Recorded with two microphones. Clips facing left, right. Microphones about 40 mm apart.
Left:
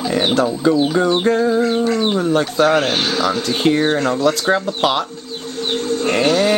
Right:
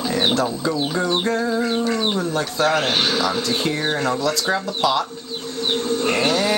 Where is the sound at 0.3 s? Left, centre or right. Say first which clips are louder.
Left 5 dB; left.